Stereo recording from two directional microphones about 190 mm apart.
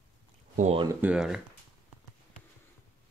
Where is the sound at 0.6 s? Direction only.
35° right (ahead or behind).